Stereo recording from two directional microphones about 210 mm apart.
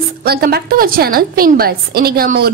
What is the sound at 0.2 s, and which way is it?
A woman's voice, 45° right (ahead or behind).